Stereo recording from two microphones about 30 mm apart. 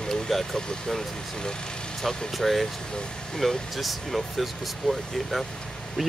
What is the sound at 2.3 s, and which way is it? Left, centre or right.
Speech, centre.